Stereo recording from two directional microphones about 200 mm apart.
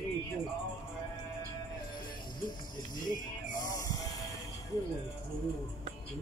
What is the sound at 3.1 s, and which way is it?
Music, 40° left (ahead or behind).